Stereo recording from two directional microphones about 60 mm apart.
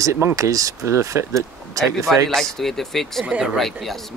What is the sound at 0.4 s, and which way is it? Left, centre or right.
Speech, right.